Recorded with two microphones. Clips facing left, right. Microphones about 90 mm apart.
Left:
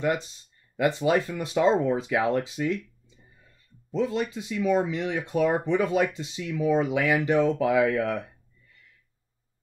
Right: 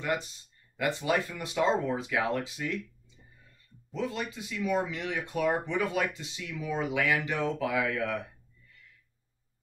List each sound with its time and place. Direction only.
0.7 s speech: 25° left (ahead or behind)
3.9 s speech: 20° left (ahead or behind)